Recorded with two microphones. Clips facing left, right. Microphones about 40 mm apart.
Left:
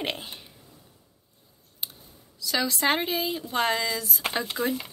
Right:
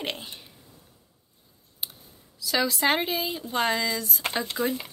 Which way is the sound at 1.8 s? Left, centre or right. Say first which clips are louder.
Even; centre.